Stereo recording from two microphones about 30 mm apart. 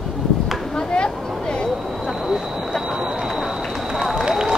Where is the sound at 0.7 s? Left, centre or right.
Left.